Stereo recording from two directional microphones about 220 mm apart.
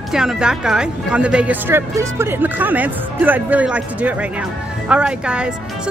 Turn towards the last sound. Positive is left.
turn(degrees=-5)  # may be behind; listen again after turning